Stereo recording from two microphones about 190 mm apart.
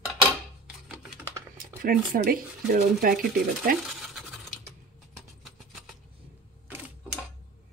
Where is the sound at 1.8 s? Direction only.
50° right (ahead or behind).